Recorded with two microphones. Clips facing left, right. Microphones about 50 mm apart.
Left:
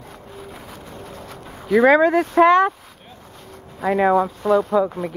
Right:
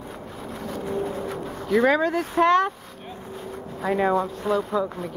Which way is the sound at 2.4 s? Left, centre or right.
Centre.